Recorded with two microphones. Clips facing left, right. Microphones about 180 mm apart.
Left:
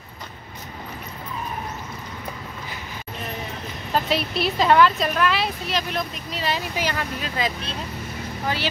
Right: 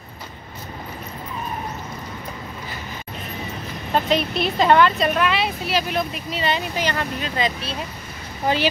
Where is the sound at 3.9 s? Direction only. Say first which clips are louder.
Right 3 dB; centre (ahead or behind).